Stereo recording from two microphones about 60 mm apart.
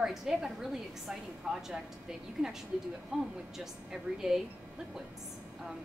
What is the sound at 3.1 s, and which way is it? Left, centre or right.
A woman's voice, centre.